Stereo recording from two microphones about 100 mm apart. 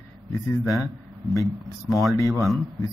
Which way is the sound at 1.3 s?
35° left (ahead or behind).